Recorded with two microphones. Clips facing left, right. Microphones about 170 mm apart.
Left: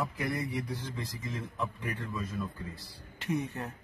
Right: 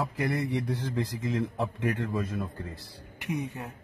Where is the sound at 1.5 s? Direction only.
80° right.